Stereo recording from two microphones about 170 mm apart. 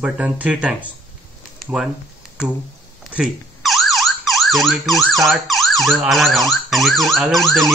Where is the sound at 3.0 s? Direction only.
Centre (ahead or behind).